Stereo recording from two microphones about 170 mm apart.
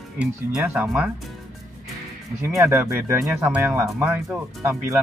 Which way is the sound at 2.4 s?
15° right (ahead or behind).